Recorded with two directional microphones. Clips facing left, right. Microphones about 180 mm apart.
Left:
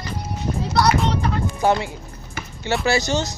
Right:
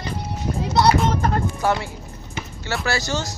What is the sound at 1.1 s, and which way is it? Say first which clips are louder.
Music: right 1 dB; 45° right (ahead or behind).